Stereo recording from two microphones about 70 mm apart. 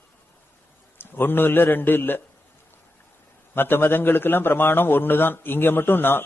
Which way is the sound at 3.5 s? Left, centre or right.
Left.